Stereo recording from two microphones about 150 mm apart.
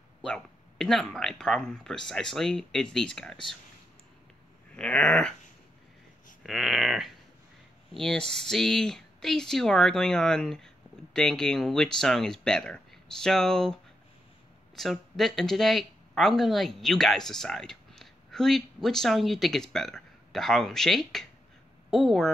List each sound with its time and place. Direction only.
0.2 s speech: 5° left (ahead or behind)
4.7 s speech: 5° left (ahead or behind)
6.4 s speech: centre (ahead or behind)
14.8 s speech: centre (ahead or behind)